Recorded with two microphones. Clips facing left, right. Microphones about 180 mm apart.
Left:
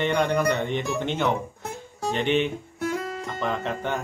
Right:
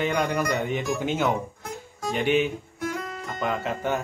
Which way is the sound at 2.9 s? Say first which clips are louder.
Left 3 dB; 35° left (ahead or behind).